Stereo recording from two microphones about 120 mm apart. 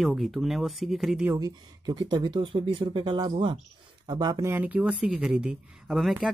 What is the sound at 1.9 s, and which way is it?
Speech, 35° right (ahead or behind).